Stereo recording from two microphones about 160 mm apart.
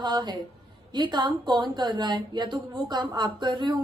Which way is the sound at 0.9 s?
30° right (ahead or behind).